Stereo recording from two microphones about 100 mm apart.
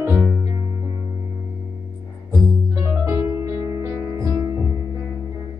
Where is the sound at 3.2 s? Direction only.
30° right (ahead or behind).